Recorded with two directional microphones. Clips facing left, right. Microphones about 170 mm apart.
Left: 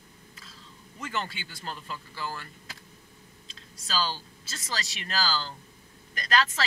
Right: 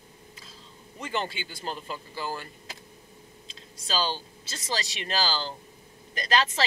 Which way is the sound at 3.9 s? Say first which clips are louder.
Right 2 dB; 25° right (ahead or behind).